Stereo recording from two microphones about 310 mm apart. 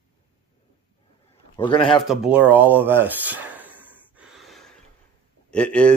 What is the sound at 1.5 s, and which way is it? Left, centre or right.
Speech, centre.